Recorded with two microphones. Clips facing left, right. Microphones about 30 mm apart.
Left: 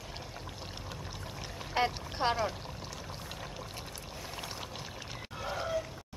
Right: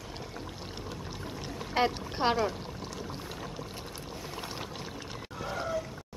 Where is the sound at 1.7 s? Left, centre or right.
Centre.